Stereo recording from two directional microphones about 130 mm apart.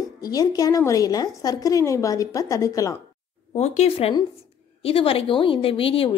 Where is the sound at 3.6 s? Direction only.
55° left (ahead or behind).